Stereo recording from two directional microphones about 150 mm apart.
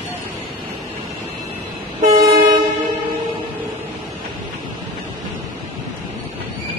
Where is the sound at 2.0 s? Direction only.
65° right (ahead or behind).